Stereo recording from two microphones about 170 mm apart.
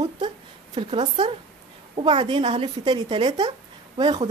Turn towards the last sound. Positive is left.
turn(degrees=-25)  # may be behind; listen again after turning